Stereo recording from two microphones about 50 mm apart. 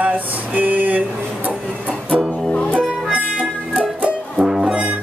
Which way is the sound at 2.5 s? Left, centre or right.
Left.